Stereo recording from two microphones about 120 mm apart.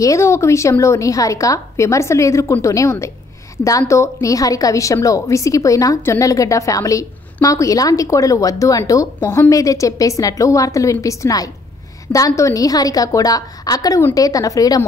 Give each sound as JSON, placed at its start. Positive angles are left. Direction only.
{"t": 0.0, "sound": "a woman's voice", "side_deg": 25}